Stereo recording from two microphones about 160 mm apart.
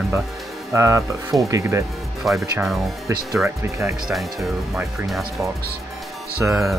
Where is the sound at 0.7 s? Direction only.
20° right (ahead or behind).